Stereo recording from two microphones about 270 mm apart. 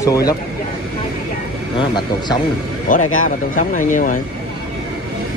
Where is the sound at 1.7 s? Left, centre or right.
Centre.